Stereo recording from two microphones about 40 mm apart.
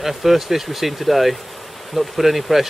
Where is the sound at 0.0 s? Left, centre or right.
Centre.